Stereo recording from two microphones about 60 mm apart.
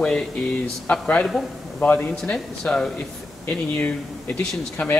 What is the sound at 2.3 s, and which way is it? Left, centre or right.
Speech, centre.